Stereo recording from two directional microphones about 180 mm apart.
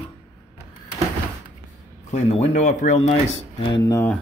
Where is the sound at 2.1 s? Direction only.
35° left (ahead or behind).